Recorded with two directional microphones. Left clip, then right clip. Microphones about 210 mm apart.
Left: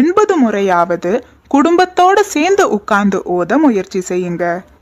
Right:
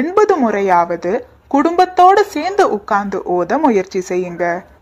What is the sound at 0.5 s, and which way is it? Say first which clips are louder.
Speech: left 1 dB; 25° left (ahead or behind).